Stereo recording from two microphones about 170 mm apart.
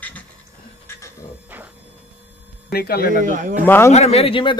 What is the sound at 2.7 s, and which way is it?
Speech, 65° left (ahead or behind).